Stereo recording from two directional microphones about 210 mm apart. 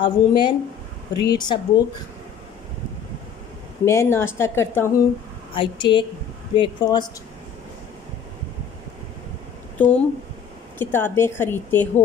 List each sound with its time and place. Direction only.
0.0 s a woman's voice: 20° left (ahead or behind)
3.8 s a woman's voice: 10° left (ahead or behind)
5.5 s a woman's voice: 25° left (ahead or behind)
9.8 s a woman's voice: 5° left (ahead or behind)